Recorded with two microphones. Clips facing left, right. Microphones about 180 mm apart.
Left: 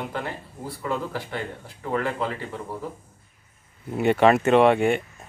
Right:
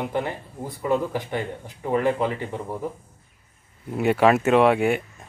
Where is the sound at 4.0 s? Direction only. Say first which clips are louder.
Even; 5° right (ahead or behind).